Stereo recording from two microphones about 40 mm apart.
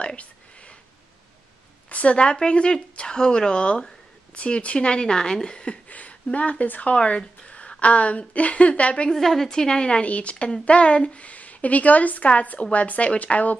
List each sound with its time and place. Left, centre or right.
0.0 s a sound: left
1.9 s a woman's voice: left
2.1 s speech: left
5.9 s a woman's voice: left
7.4 s a sound: left
7.8 s a woman's voice: left
9.1 s a woman's voice: centre
9.5 s a woman's voice: centre; by 13.6 s left